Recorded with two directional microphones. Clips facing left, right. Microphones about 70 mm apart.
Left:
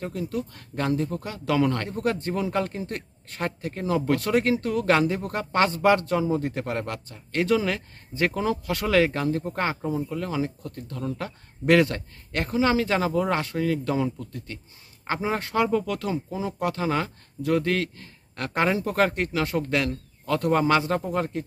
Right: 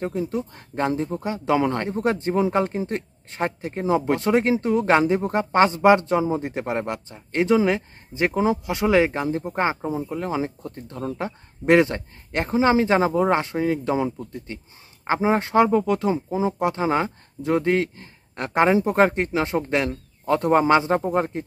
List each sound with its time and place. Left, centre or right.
0.0 s speech: right